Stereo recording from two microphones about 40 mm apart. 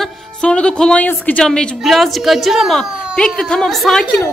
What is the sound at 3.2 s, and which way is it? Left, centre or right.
Speech, left.